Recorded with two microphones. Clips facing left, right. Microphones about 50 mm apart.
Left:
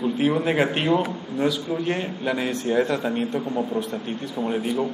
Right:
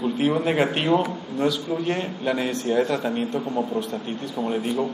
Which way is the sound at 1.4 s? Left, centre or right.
Centre.